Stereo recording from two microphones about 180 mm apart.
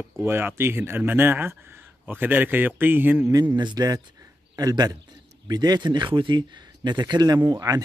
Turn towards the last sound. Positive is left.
turn(degrees=-20)  # may be behind; listen again after turning